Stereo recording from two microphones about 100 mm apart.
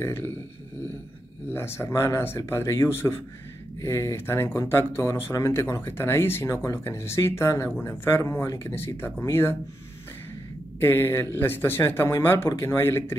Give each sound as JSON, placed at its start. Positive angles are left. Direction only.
{"t": 0.0, "sound": "speech", "side_deg": 25}
{"t": 1.5, "sound": "speech", "side_deg": 25}
{"t": 10.8, "sound": "speech", "side_deg": 20}